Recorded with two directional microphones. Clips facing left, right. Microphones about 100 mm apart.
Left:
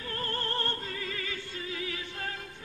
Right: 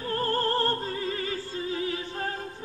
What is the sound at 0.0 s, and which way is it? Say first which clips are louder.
Opera: right 8 dB; 35° right (ahead or behind).